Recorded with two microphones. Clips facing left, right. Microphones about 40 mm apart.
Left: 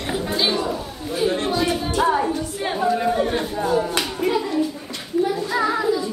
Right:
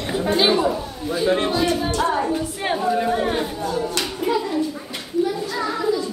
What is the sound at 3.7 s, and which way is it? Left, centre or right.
Clapping, centre.